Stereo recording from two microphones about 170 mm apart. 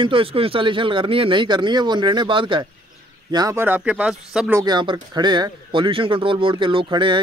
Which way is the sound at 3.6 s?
10° right (ahead or behind).